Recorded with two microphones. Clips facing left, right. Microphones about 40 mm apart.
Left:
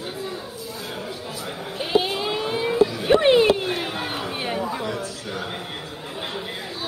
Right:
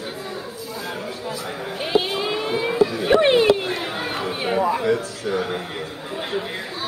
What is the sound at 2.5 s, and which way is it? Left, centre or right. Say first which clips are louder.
Vehicle: even; centre.